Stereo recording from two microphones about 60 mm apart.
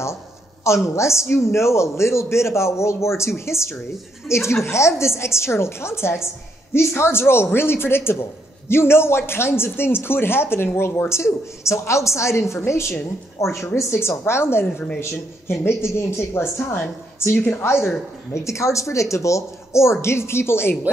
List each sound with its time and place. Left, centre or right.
0.9 s speech: left
17.3 s a woman's voice: left
17.6 s speech: left
18.3 s speech: left